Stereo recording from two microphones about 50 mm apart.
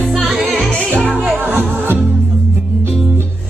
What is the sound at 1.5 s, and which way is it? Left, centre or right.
Music, right.